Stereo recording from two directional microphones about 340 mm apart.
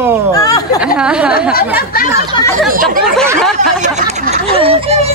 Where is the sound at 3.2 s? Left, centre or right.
Centre.